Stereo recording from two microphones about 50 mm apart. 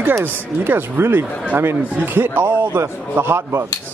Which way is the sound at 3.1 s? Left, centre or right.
Right.